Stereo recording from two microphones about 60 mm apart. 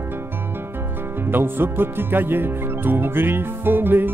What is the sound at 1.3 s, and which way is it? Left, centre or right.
Music, right.